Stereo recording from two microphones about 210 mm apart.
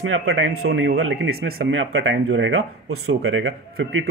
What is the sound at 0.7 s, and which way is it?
Speech, 50° right (ahead or behind).